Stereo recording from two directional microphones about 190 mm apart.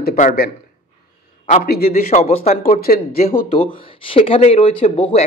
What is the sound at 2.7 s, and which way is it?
Speech, 50° left (ahead or behind).